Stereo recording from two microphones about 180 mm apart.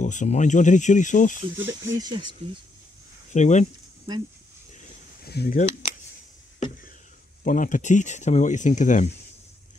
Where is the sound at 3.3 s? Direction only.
40° left (ahead or behind).